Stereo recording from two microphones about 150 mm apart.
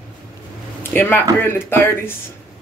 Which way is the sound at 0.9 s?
15° left (ahead or behind).